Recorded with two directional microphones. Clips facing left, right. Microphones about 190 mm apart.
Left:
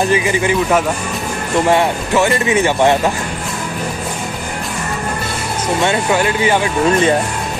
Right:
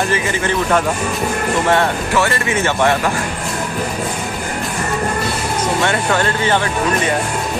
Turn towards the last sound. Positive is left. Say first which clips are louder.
# left 2 dB
turn(degrees=10)  # may be behind; listen again after turning